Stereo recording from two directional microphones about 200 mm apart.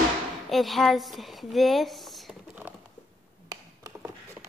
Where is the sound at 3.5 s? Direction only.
15° right (ahead or behind).